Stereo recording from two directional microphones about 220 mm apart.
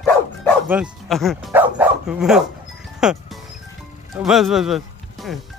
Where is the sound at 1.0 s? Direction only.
Centre (ahead or behind).